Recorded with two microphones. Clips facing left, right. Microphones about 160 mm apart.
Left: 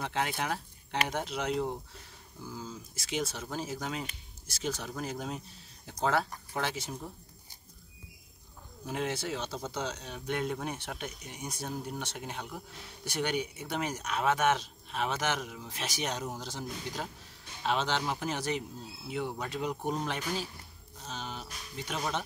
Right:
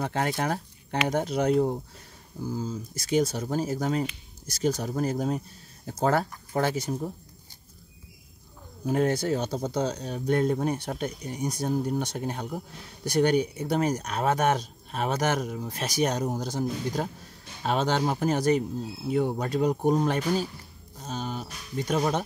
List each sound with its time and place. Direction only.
0.0 s speech: 45° right (ahead or behind)
8.8 s speech: 45° right (ahead or behind)